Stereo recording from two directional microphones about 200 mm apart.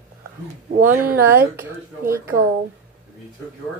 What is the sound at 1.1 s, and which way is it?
A woman's voice, 10° right (ahead or behind).